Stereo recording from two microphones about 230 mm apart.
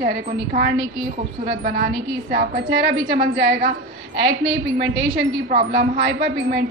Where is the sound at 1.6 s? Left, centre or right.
Right.